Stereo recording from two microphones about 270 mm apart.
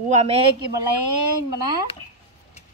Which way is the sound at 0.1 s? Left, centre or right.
Right.